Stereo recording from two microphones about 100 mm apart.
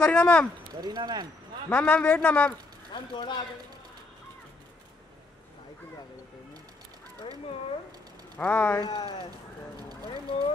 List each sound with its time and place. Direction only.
0.0 s speech: 10° left (ahead or behind)
0.7 s speech: 45° right (ahead or behind)
1.7 s a man's voice: 15° left (ahead or behind)
2.9 s speech: 50° left (ahead or behind)
8.4 s a man's voice: 15° left (ahead or behind)
8.7 s speech: 45° left (ahead or behind)